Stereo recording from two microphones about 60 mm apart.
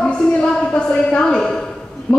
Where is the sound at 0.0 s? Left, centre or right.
Centre.